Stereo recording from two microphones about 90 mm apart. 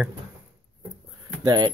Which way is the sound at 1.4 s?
50° right (ahead or behind).